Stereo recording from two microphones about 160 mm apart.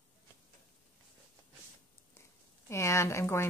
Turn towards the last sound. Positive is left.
turn(degrees=15)  # may be behind; listen again after turning